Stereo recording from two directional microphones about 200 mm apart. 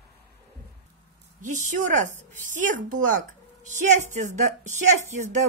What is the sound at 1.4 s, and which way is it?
A woman's voice, 40° right (ahead or behind).